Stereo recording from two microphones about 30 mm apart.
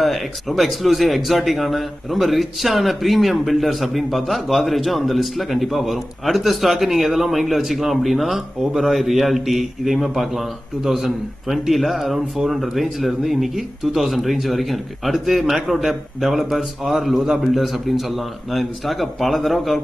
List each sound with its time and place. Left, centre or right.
0.0 s speech: centre
15.1 s a man's voice: centre
16.5 s speech: centre